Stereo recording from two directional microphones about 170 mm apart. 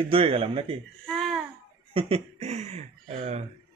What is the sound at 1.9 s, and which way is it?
Speech, 35° right (ahead or behind).